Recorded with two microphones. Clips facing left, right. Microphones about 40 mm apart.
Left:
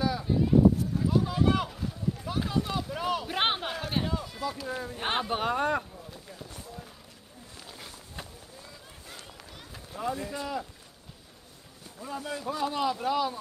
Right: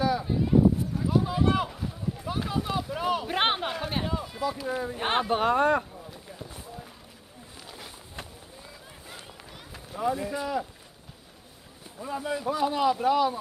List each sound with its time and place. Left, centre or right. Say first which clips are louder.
0.0 s a sound: right 1 dB; centre
9.7 s speech: right 5 dB; centre
12.0 s speech: right 5 dB; centre